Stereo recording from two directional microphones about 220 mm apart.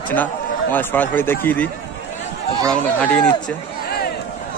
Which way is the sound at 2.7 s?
5° left (ahead or behind).